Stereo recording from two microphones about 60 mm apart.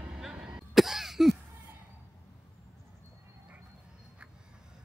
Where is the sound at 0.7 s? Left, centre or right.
Centre.